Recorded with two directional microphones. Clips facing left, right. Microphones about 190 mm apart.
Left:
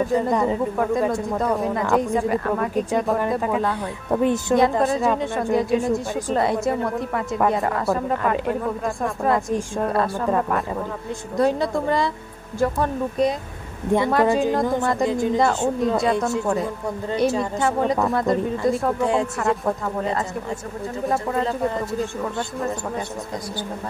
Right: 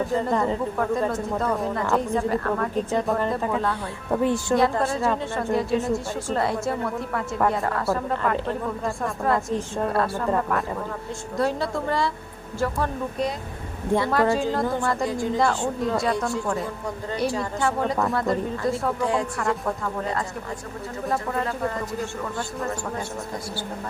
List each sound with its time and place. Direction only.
0.1 s a woman's voice: 15° left (ahead or behind)
13.9 s a woman's voice: 20° left (ahead or behind)
21.1 s a woman's voice: 20° left (ahead or behind)